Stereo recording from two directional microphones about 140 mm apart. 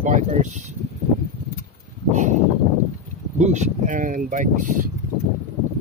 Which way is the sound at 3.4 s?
60° right (ahead or behind).